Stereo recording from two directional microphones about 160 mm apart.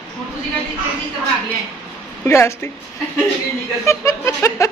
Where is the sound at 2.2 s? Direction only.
15° left (ahead or behind).